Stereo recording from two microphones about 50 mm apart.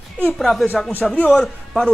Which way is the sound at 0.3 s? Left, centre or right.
Centre.